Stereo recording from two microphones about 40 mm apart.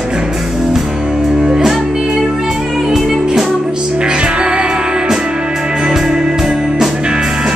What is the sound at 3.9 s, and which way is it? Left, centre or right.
Music, right.